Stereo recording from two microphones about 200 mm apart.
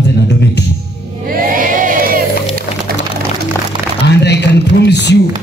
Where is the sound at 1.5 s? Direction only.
45° right (ahead or behind).